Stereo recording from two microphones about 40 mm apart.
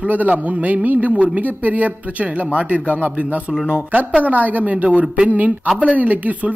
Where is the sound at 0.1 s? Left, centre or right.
Right.